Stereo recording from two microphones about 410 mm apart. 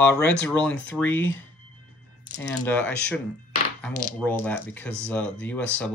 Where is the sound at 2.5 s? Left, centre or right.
Centre.